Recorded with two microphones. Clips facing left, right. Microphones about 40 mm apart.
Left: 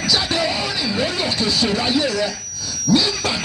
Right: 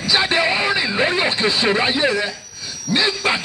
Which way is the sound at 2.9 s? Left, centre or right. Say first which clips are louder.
Even; right.